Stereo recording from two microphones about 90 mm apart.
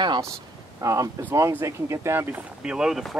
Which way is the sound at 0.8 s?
35° right (ahead or behind).